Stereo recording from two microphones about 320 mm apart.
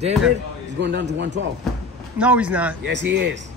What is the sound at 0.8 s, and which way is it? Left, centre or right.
Speech, right.